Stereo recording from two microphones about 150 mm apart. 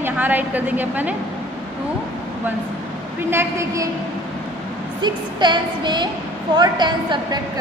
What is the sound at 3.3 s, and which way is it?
Speech, 20° right (ahead or behind).